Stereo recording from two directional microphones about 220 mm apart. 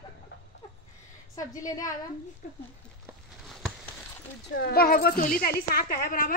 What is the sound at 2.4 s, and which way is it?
Speech, 40° left (ahead or behind).